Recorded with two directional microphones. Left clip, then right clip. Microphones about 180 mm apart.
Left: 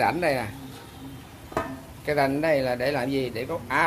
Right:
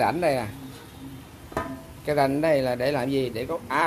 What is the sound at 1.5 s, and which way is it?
Speech, 20° right (ahead or behind).